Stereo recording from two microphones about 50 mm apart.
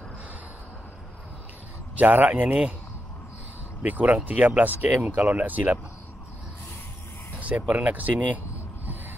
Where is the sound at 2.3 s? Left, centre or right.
Right.